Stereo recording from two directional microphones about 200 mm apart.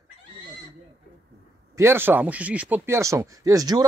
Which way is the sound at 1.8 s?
10° right (ahead or behind).